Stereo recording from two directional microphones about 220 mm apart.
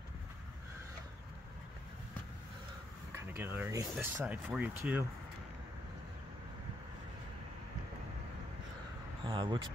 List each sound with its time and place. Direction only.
3.2 s speech: 10° right (ahead or behind)
9.2 s speech: 20° right (ahead or behind)